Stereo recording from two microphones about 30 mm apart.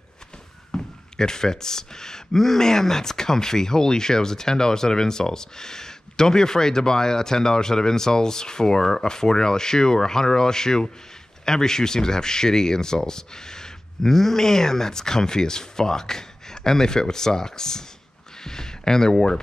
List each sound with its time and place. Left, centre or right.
0.7 s speech: left